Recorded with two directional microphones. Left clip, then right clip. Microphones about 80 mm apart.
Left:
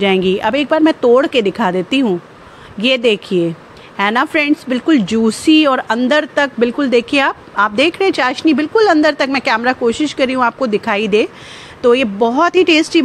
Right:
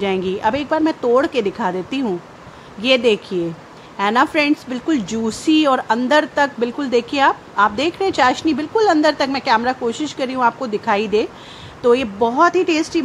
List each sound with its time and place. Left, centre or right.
0.0 s a woman's voice: left
12.4 s speech: left